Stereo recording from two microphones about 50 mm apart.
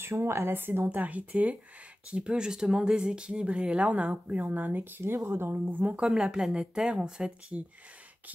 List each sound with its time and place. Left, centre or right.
0.0 s speech: right
0.5 s speech: right
0.8 s speech: right
5.0 s speech: right
6.0 s speech: centre